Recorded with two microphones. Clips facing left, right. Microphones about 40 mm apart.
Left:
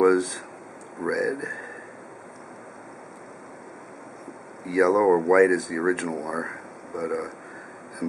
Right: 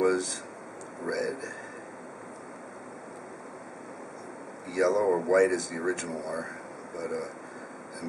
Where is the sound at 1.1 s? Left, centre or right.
Centre.